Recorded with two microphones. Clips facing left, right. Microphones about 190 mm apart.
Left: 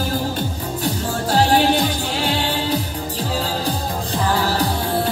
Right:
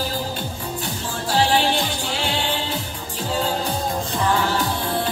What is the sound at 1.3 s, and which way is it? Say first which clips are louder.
Music: left 3 dB; 45° left (ahead or behind).